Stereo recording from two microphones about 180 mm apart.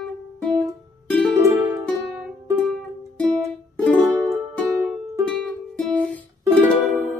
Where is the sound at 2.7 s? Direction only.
5° left (ahead or behind).